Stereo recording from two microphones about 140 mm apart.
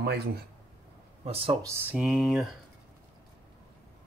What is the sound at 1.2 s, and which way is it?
Speech, 45° right (ahead or behind).